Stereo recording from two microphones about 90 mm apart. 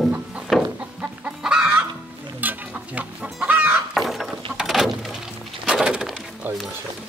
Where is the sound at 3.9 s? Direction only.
Centre (ahead or behind).